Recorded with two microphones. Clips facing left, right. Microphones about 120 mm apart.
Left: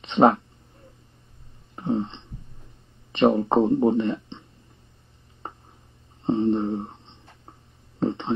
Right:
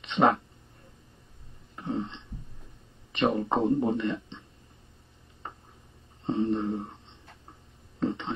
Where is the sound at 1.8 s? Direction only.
30° left (ahead or behind).